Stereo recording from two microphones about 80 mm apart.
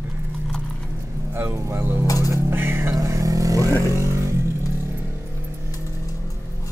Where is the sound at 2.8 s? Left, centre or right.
Right.